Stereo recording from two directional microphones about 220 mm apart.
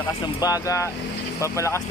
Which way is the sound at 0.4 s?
15° left (ahead or behind).